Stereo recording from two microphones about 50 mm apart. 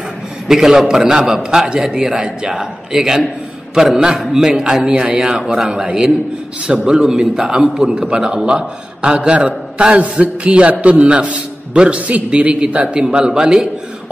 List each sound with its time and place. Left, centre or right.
0.5 s a man's voice: centre